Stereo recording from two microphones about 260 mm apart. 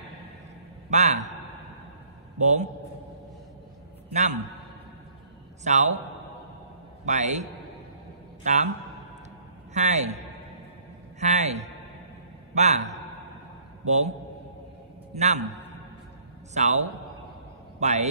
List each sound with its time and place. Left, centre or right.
0.8 s a man's voice: right
2.3 s a man's voice: right
4.1 s a man's voice: right
5.6 s a man's voice: right
7.1 s a man's voice: right
8.5 s a man's voice: right
9.8 s a man's voice: right
15.1 s a man's voice: right